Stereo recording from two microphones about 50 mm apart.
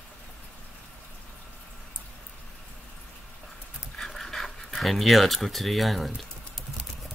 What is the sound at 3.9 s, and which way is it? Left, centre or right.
Pant, centre.